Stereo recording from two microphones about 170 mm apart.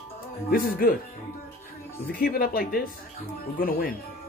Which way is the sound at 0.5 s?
55° left (ahead or behind).